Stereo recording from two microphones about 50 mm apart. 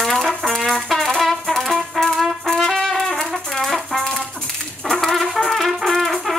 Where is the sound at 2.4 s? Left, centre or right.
Centre.